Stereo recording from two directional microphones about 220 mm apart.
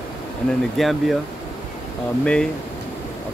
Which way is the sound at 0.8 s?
Centre (ahead or behind).